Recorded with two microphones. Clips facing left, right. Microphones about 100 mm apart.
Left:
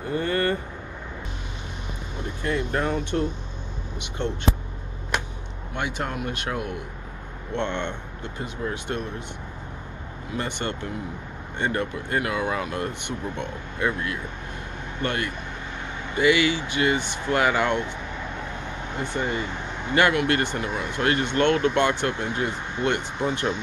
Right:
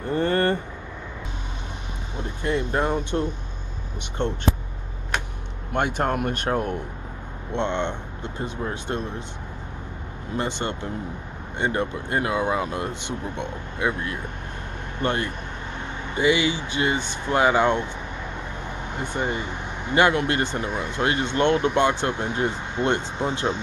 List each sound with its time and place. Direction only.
0.1 s vehicle: 35° right (ahead or behind)
2.4 s speech: 25° right (ahead or behind)
5.7 s speech: 50° right (ahead or behind)
7.5 s speech: 25° right (ahead or behind)
10.3 s speech: 25° right (ahead or behind)
19.1 s speech: 20° right (ahead or behind)